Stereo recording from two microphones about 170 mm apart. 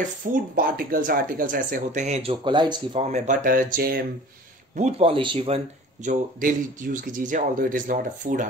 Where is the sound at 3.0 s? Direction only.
45° right (ahead or behind); by 4.0 s 60° right (ahead or behind).